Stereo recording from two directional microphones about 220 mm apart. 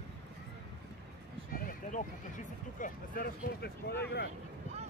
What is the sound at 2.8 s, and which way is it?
Speech, 40° left (ahead or behind).